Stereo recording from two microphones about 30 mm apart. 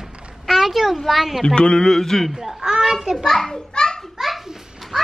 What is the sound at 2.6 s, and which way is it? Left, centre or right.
Speech, centre.